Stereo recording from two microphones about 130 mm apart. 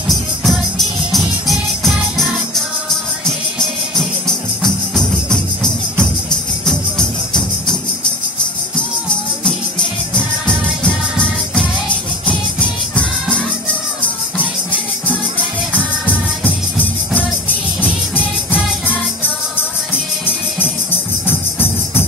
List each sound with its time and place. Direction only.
0.1 s music: centre (ahead or behind)
4.6 s music: 5° left (ahead or behind)
10.1 s music: 5° left (ahead or behind)
12.3 s music: 10° left (ahead or behind)
16.1 s music: 15° left (ahead or behind)
21.3 s music: 15° left (ahead or behind)